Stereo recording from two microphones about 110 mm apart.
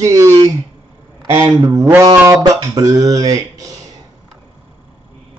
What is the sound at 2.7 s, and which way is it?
Speech, 30° right (ahead or behind).